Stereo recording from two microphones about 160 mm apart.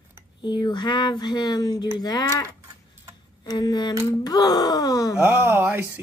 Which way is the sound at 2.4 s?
15° right (ahead or behind).